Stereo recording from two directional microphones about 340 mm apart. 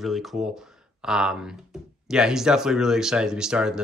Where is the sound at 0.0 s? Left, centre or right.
Centre.